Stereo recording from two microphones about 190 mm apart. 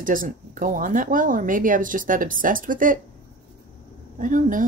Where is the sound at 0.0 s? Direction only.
45° right (ahead or behind).